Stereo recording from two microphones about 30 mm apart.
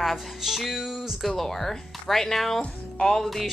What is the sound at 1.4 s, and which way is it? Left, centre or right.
Speech, centre.